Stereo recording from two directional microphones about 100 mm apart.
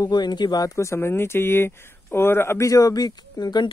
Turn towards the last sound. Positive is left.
turn(degrees=45)  # may be behind; listen again after turning